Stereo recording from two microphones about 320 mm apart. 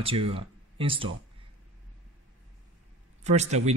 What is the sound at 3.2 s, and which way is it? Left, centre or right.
Speech, right.